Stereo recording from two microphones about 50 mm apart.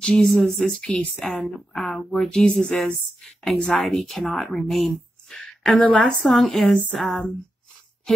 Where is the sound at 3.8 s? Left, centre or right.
Centre.